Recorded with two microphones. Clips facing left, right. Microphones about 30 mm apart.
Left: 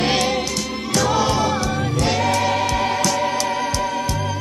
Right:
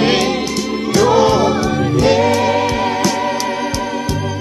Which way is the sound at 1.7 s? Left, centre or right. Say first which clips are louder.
Right 6 dB; right.